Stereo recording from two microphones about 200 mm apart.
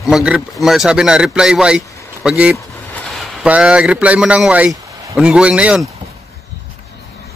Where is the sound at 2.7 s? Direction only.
5° left (ahead or behind); by 5.1 s 10° right (ahead or behind).